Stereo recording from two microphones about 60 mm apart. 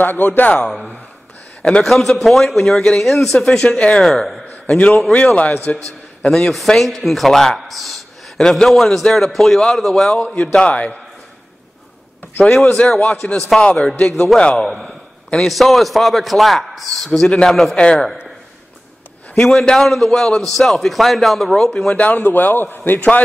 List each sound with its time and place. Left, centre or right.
0.0 s a man's voice: left
1.6 s a man's voice: centre
3.4 s a man's voice: centre
4.0 s a man's voice: centre
4.7 s a man's voice: left
5.9 s a man's voice: centre
10.1 s a man's voice: centre
12.4 s a man's voice: centre
14.7 s a man's voice: centre
19.3 s a man's voice: centre
21.9 s a man's voice: left